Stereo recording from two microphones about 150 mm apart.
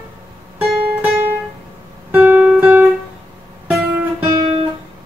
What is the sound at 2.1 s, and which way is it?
Guitar, 10° right (ahead or behind).